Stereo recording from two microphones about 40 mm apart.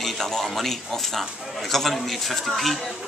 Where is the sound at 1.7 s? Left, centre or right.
Centre.